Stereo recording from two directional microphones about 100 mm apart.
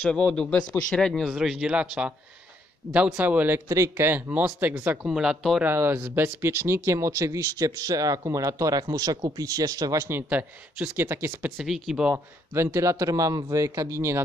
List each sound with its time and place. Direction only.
0.0 s a man's voice: 5° left (ahead or behind)
1.3 s speech: 5° right (ahead or behind)
3.6 s speech: 30° right (ahead or behind)
5.0 s speech: 10° right (ahead or behind)
5.6 s speech: 20° right (ahead or behind); by 10.0 s 35° right (ahead or behind)
10.0 s speech: 20° right (ahead or behind)
11.5 s speech: centre (ahead or behind)
12.1 s speech: 25° right (ahead or behind)